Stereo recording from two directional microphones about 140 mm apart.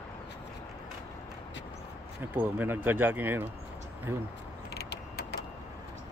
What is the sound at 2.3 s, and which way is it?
Speech, 15° right (ahead or behind).